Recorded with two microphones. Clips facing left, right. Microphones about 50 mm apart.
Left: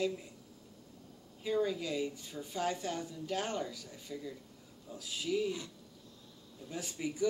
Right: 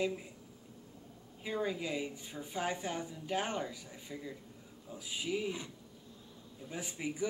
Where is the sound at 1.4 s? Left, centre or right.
Centre.